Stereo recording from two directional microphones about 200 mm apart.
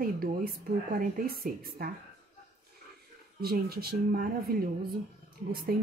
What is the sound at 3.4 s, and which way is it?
Speech, 50° right (ahead or behind).